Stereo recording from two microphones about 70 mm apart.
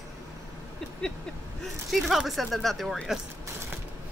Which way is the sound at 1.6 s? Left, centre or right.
Centre.